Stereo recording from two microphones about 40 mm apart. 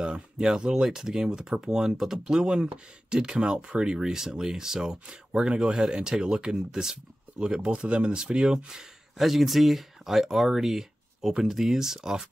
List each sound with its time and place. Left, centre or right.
0.0 s speech: centre
2.4 s speech: right
9.2 s speech: centre